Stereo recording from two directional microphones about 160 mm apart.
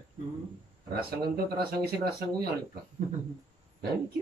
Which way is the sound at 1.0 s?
75° right (ahead or behind).